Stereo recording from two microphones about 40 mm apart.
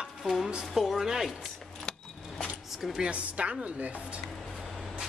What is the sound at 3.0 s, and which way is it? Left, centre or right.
Speech, right.